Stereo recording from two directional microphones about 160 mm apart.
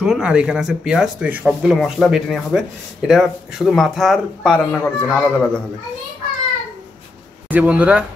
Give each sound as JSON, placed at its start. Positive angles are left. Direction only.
{"t": 0.0, "sound": "speech", "side_deg": -5}
{"t": 7.4, "sound": "speech", "side_deg": -10}